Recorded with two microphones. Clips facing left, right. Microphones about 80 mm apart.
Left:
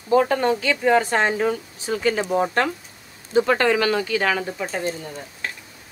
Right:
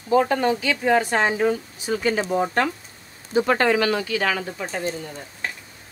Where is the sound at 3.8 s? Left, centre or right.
Left.